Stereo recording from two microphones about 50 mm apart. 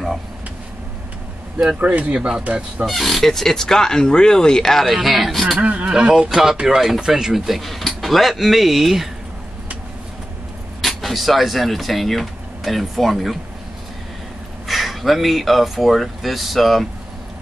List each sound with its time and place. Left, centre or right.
1.7 s speech: right
2.8 s speech: centre
5.6 s speech: right; by 9.1 s centre
10.8 s speech: centre
14.7 s speech: centre